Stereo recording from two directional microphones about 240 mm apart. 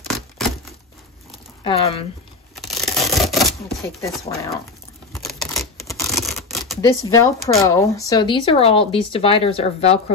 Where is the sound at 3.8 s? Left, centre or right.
Centre.